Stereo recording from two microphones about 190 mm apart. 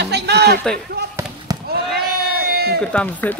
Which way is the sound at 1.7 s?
55° right (ahead or behind).